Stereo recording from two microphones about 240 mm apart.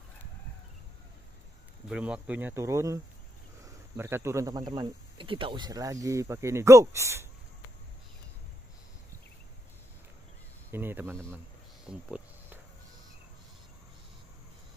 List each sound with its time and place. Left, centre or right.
1.9 s speech: centre
10.7 s speech: centre
11.3 s a sound: centre